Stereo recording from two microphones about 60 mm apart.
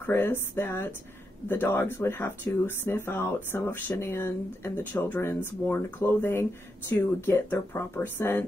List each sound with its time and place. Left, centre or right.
0.1 s speech: left